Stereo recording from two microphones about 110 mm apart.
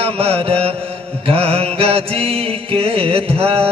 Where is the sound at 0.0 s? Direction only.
60° right (ahead or behind).